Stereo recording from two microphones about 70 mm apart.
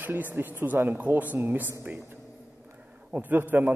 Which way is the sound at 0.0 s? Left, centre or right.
Right.